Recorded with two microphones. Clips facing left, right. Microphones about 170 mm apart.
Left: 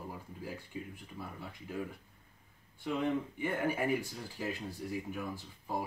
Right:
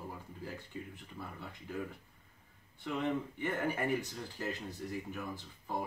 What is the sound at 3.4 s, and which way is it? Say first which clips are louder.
Speech: left 2 dB; 10° left (ahead or behind).